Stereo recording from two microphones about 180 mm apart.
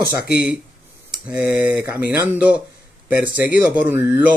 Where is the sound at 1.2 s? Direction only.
10° right (ahead or behind).